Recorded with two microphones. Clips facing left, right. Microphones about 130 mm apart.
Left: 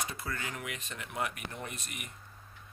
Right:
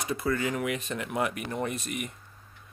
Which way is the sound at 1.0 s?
85° right.